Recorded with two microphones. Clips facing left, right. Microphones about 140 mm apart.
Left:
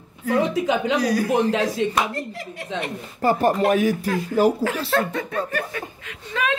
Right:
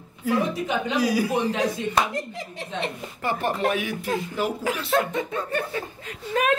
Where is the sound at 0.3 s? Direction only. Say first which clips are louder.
Left 4 dB; 90° left.